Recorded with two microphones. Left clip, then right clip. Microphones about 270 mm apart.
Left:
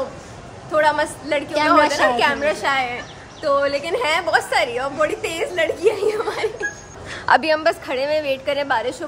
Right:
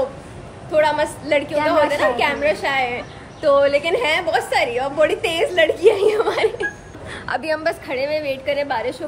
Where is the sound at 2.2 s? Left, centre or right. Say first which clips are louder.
Even; centre.